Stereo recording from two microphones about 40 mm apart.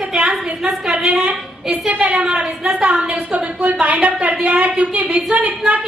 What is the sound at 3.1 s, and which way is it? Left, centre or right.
Speech, right.